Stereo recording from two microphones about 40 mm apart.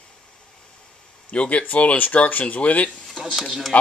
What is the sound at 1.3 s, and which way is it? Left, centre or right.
Speech, left.